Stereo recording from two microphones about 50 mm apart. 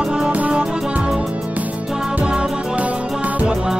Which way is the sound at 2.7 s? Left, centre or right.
Right.